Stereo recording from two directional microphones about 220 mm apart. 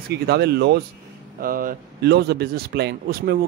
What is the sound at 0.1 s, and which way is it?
Speech, 50° right (ahead or behind).